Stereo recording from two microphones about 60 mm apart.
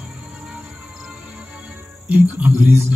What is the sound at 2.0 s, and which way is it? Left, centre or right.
Music, right.